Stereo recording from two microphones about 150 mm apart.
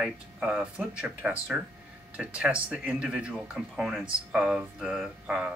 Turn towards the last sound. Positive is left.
turn(degrees=-5)  # may be behind; listen again after turning